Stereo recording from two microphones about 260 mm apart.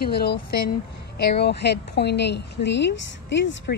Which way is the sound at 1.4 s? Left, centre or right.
Left.